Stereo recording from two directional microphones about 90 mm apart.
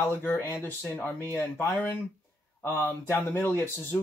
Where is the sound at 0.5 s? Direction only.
25° left (ahead or behind).